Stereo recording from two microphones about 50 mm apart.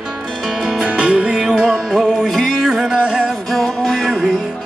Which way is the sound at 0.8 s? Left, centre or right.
Right.